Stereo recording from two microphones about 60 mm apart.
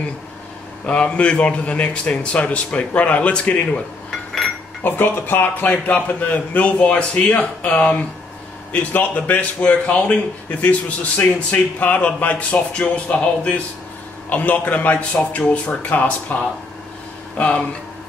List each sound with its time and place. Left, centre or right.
0.8 s a man's voice: centre
4.8 s a man's voice: left